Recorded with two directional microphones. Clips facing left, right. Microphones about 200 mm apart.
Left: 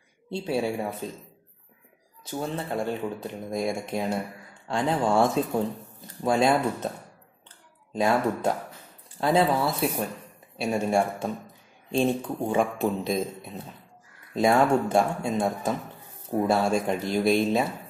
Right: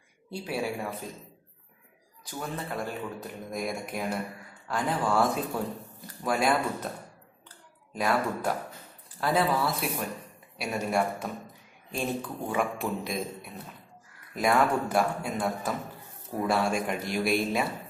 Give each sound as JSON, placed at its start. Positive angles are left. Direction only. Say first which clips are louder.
{"t": 0.3, "sound": "speech", "louder": "left 5 dB", "side_deg": 25}
{"t": 2.2, "sound": "speech", "louder": "left 5 dB", "side_deg": 30}
{"t": 7.4, "sound": "clicking", "louder": "right 1 dB", "side_deg": 25}
{"t": 9.2, "sound": "speech", "louder": "left 4 dB", "side_deg": 25}